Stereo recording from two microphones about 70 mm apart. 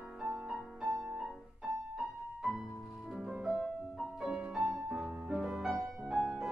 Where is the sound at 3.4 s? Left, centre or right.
Centre.